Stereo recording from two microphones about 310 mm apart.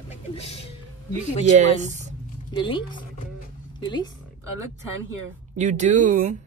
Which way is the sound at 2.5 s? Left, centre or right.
Centre.